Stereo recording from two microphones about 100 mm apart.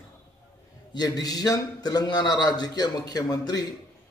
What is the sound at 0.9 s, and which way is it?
A man's voice, 40° left (ahead or behind).